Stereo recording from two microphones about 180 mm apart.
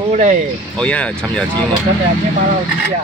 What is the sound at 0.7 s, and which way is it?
Speech, 5° left (ahead or behind).